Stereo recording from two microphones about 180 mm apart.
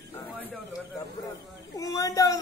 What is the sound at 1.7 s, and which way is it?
Speech, 20° left (ahead or behind).